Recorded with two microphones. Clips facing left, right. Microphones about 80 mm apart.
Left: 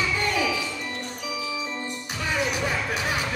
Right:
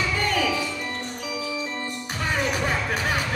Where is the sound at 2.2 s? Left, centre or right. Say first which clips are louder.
Right 1 dB; right.